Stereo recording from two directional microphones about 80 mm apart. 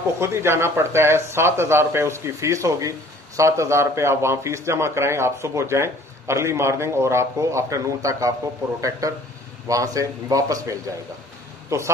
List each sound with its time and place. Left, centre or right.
0.2 s a man's voice: right